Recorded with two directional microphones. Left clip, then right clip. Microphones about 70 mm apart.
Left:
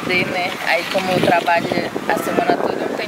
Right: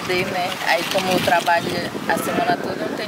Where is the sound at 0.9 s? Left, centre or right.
Right.